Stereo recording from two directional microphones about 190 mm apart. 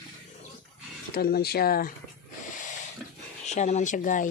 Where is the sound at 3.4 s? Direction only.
35° left (ahead or behind).